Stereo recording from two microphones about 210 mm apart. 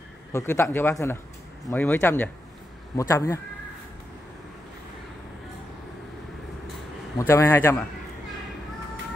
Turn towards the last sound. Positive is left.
turn(degrees=10)  # may be behind; listen again after turning